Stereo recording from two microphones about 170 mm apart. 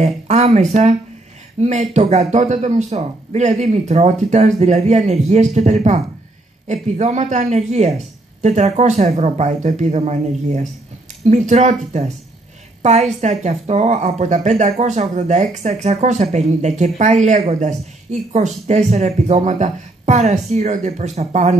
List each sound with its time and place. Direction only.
0.0 s a woman's voice: 40° right (ahead or behind)